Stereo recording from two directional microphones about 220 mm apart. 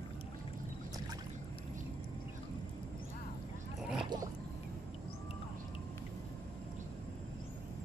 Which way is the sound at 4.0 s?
20° right (ahead or behind).